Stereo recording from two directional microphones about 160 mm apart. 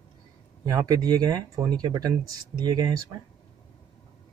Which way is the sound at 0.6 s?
20° right (ahead or behind).